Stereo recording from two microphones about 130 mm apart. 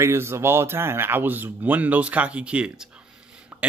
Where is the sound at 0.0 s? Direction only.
20° right (ahead or behind).